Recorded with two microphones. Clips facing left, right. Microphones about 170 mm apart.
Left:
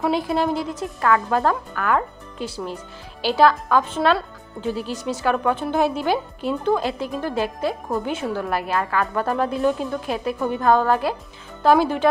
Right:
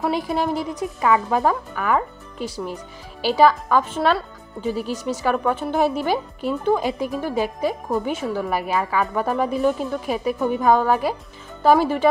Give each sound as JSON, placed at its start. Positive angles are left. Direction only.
{"t": 0.0, "sound": "speech", "side_deg": -5}